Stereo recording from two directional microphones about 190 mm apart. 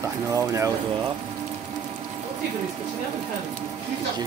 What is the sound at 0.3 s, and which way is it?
Speech, 15° right (ahead or behind).